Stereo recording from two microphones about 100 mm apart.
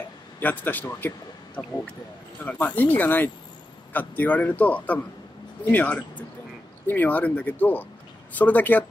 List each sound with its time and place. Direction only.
0.4 s a man's voice: 15° left (ahead or behind)